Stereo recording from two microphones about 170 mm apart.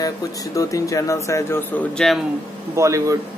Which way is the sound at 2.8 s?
20° right (ahead or behind).